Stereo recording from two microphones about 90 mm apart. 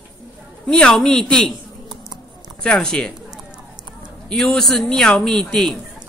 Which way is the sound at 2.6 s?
10° left (ahead or behind).